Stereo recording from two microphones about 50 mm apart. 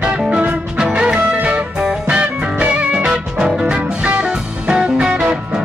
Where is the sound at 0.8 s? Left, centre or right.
Centre.